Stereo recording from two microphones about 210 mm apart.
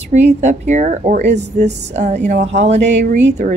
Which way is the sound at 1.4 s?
30° right (ahead or behind).